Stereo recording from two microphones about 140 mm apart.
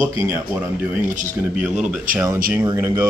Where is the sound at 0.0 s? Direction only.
15° right (ahead or behind).